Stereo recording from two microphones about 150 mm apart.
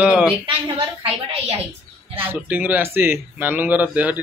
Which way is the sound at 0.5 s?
40° right (ahead or behind).